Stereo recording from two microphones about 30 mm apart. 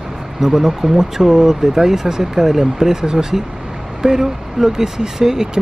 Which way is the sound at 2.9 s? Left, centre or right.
Right.